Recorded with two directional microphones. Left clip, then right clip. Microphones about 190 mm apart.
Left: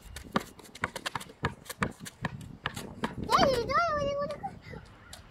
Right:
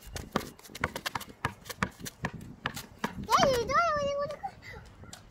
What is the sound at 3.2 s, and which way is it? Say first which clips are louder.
Dog: even; 90° right.